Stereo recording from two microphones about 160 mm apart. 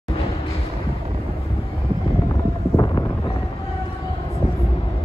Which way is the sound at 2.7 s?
20° left (ahead or behind).